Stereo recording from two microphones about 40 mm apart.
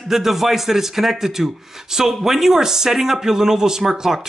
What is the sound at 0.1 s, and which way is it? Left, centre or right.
Speech, centre.